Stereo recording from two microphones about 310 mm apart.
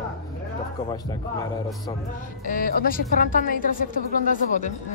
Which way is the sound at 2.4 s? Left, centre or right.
Left.